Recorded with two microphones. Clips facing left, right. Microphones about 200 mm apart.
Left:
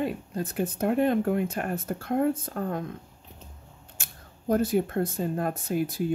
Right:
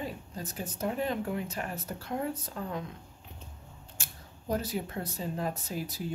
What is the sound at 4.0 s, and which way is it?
Speech, 50° left (ahead or behind).